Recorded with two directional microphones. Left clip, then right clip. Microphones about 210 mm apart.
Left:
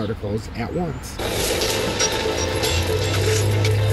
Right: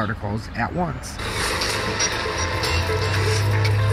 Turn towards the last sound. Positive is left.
turn(degrees=25)  # may be behind; listen again after turning